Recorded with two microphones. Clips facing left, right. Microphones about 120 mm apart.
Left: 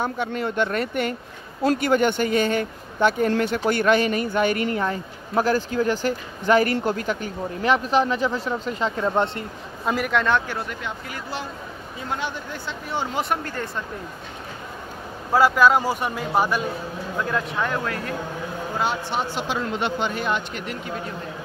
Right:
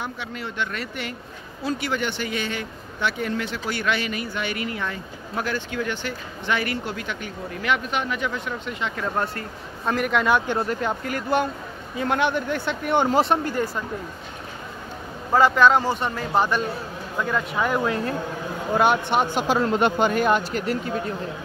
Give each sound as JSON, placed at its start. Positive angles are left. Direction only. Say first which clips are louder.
{"t": 0.0, "sound": "speech", "louder": "left 7 dB", "side_deg": 45}
{"t": 9.0, "sound": "speech", "louder": "left 4 dB", "side_deg": 25}
{"t": 9.8, "sound": "a man's voice", "louder": "even", "side_deg": 5}
{"t": 10.3, "sound": "speech", "louder": "right 2 dB", "side_deg": -20}
{"t": 10.7, "sound": "speech", "louder": "right 7 dB", "side_deg": -45}
{"t": 12.0, "sound": "speech", "louder": "right 7 dB", "side_deg": -65}
{"t": 13.5, "sound": "speech", "louder": "right 4 dB", "side_deg": -10}
{"t": 15.3, "sound": "speech", "louder": "even", "side_deg": 5}
{"t": 17.2, "sound": "a man's voice", "louder": "right 1 dB", "side_deg": 0}
{"t": 17.6, "sound": "speech", "louder": "right 4 dB", "side_deg": -20}
{"t": 18.8, "sound": "speech", "louder": "right 6 dB", "side_deg": -60}
{"t": 19.4, "sound": "speech", "louder": "right 5 dB", "side_deg": -45}